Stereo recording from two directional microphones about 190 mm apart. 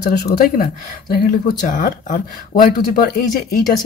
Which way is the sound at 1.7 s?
45° left (ahead or behind).